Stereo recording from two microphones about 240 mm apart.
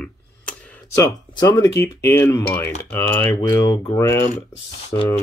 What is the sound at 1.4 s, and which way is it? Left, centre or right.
Speech, centre.